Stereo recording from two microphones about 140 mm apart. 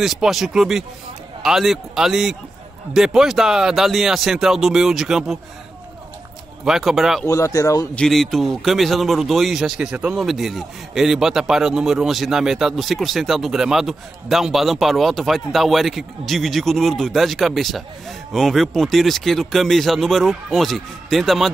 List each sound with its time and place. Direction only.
0.0 s a man's voice: centre (ahead or behind)
6.6 s a man's voice: centre (ahead or behind)
7.2 s speech: 20° left (ahead or behind)
7.9 s a man's voice: 5° left (ahead or behind)